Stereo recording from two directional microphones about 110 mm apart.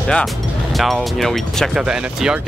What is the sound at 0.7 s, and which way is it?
Speech, centre (ahead or behind).